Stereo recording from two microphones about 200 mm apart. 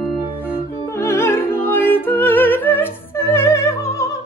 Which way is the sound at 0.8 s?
15° left (ahead or behind).